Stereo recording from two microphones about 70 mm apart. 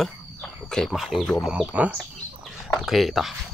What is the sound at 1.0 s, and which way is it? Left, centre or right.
Speech, centre.